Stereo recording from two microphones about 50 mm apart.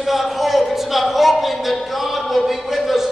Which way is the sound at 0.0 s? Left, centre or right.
Centre.